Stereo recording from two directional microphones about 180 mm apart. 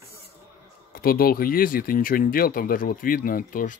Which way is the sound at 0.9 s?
55° left (ahead or behind).